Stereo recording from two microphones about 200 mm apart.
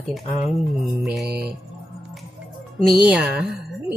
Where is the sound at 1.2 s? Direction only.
55° right (ahead or behind).